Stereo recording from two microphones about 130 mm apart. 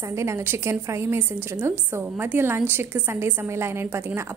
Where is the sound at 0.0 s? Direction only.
20° right (ahead or behind).